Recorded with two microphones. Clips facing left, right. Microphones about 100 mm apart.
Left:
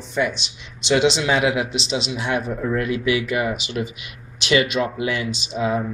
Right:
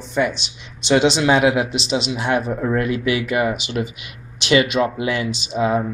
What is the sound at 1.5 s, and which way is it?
A man's voice, 50° right (ahead or behind).